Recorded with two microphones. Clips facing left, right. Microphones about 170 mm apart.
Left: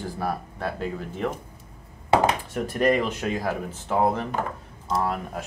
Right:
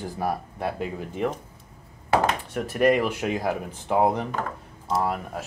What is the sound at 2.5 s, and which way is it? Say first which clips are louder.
Speech: right 5 dB; 5° right (ahead or behind).